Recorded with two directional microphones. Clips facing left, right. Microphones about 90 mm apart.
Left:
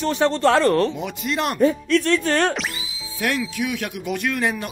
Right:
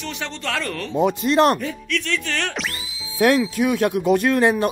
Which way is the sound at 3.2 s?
35° right (ahead or behind).